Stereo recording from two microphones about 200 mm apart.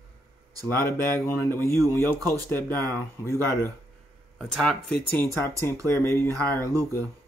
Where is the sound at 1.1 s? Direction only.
10° left (ahead or behind).